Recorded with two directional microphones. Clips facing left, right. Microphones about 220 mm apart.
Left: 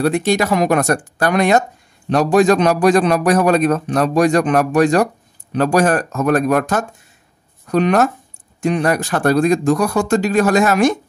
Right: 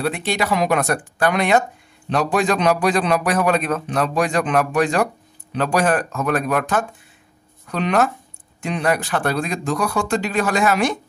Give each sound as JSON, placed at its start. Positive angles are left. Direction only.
{"t": 0.0, "sound": "a man's voice", "side_deg": 45}